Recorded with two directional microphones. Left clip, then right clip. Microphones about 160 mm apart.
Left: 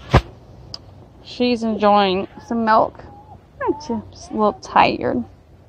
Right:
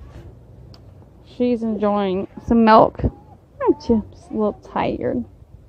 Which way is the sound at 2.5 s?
55° right (ahead or behind).